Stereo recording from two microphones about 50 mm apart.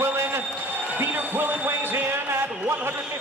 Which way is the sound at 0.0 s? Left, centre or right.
Right.